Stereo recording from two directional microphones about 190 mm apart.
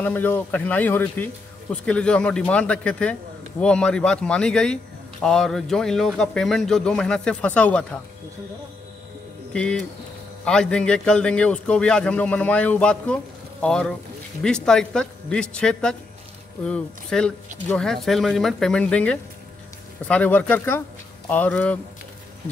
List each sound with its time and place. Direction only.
0.0 s speech: 10° left (ahead or behind)
9.5 s speech: 5° left (ahead or behind)